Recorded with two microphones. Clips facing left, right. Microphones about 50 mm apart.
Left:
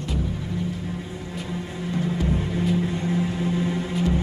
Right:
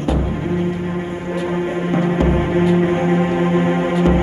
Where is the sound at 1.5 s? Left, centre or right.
Right.